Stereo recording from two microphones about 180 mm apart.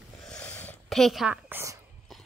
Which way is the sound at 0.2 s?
5° left (ahead or behind).